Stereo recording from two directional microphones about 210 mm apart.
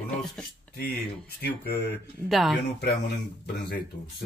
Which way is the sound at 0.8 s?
50° left (ahead or behind).